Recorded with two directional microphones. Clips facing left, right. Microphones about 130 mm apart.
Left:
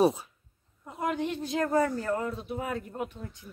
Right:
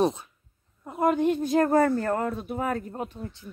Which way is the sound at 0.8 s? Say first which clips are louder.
Right 8 dB; 50° right (ahead or behind).